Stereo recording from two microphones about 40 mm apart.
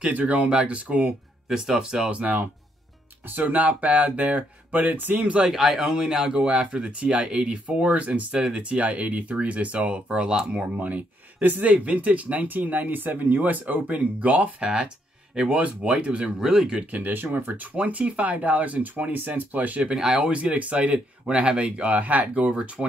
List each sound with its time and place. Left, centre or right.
0.0 s speech: right
0.5 s speech: right
1.5 s speech: centre
2.0 s speech: right
3.3 s speech: right
5.5 s speech: centre; by 8.3 s right
8.3 s speech: right
10.6 s speech: right
14.6 s speech: right
16.3 s speech: centre
17.1 s speech: right
17.7 s speech: right
20.2 s speech: right